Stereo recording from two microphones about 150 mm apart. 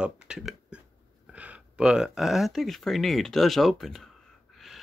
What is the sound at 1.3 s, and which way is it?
Speech, 10° right (ahead or behind).